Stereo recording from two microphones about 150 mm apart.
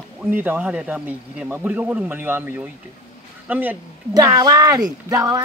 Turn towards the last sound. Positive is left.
turn(degrees=-25)  # may be behind; listen again after turning